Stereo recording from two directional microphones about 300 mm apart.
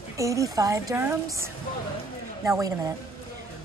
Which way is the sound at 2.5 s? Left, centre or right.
Centre.